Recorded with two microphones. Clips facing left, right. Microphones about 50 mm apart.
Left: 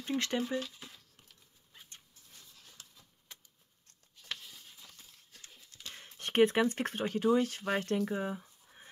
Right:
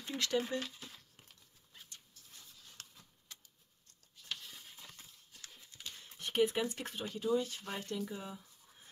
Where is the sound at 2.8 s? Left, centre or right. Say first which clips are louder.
Right 4 dB; right.